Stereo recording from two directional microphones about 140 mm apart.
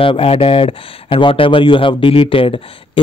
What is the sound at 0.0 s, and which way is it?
Speech, 40° left (ahead or behind).